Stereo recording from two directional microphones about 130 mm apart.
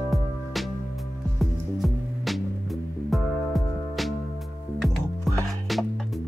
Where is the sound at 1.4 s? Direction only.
Centre (ahead or behind).